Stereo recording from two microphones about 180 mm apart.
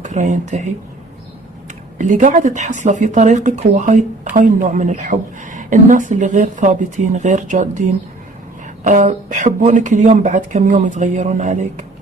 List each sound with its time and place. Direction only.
0.0 s speech: 40° right (ahead or behind)
2.0 s a woman's voice: 45° right (ahead or behind)